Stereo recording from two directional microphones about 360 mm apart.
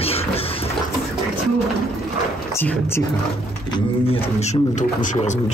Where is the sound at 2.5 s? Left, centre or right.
Centre.